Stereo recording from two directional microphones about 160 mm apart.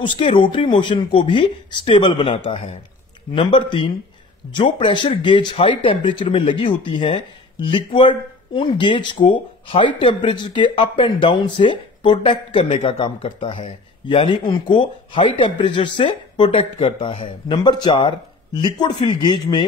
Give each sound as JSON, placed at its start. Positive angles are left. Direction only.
{"t": 0.0, "sound": "speech", "side_deg": 35}